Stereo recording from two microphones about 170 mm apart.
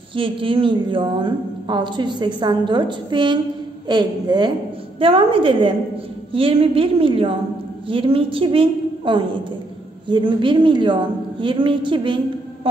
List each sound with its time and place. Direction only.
0.1 s a woman's voice: 30° right (ahead or behind)